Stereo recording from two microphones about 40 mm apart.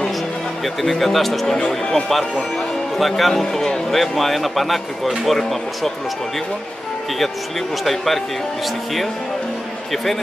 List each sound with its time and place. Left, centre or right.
0.8 s speech: centre
1.6 s speech: centre
3.0 s speech: centre
7.8 s speech: centre